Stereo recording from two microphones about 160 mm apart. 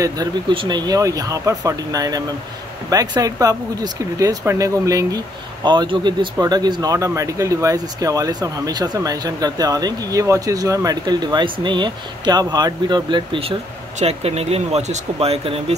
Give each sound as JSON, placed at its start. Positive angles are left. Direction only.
{"t": 0.0, "sound": "speech", "side_deg": -25}